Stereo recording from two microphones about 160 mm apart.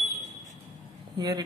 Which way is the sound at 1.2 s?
25° right (ahead or behind).